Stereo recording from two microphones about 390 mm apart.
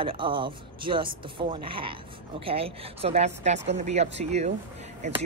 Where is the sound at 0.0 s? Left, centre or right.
Centre.